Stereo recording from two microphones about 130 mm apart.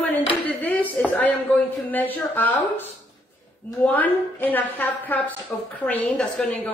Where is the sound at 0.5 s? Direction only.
10° left (ahead or behind).